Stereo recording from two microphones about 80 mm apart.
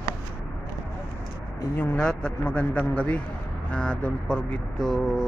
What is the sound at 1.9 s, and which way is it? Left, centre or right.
Speech, centre.